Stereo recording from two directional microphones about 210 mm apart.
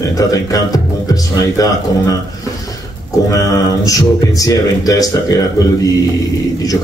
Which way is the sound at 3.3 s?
15° left (ahead or behind).